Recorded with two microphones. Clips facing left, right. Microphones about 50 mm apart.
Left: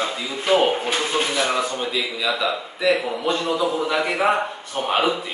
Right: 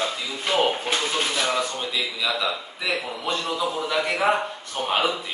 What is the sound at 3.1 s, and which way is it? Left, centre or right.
A man's voice, centre.